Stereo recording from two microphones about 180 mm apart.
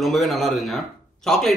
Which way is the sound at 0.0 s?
Centre (ahead or behind).